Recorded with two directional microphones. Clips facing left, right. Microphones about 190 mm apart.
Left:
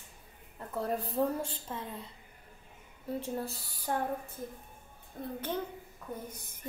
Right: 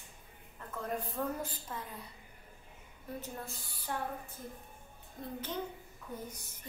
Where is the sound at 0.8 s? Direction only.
35° left (ahead or behind).